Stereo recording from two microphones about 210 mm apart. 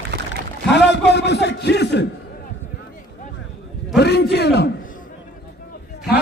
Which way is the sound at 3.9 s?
50° left (ahead or behind).